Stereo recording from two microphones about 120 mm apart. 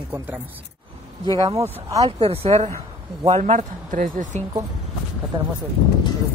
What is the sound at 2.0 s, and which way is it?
Speech, 55° right (ahead or behind).